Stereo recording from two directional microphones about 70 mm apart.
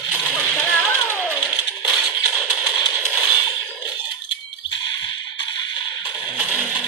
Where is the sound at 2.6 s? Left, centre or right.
Left.